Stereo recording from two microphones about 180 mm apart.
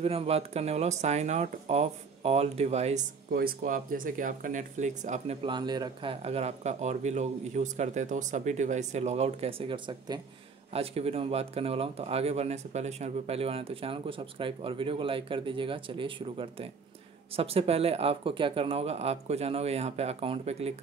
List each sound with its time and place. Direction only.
0.0 s speech: 35° right (ahead or behind)
3.3 s speech: 55° right (ahead or behind)
5.4 s a man's voice: 25° right (ahead or behind)
6.2 s speech: 35° right (ahead or behind)